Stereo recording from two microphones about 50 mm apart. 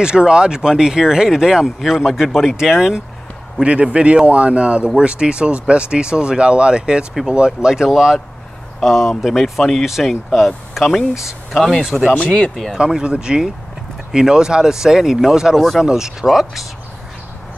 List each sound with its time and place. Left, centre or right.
0.0 s speech: centre
3.6 s speech: right; by 12.2 s centre
12.7 s speech: centre